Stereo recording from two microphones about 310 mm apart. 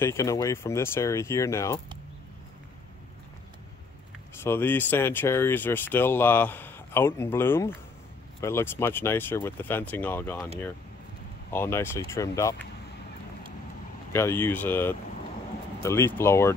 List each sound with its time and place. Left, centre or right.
0.0 s speech: centre
4.4 s speech: centre
11.5 s speech: centre
14.1 s speech: centre